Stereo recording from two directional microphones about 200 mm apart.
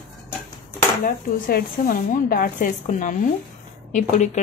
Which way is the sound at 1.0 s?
40° left (ahead or behind).